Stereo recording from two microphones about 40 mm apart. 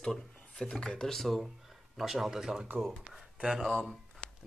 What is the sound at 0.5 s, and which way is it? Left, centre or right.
Speech, centre.